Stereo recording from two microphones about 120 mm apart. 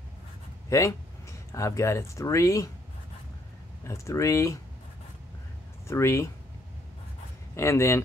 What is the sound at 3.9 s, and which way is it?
Speech, 25° left (ahead or behind).